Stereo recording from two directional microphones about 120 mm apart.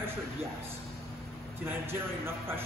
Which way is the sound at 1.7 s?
20° right (ahead or behind).